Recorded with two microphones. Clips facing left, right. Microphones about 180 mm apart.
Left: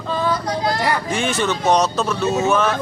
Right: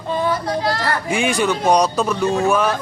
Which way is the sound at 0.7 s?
15° left (ahead or behind).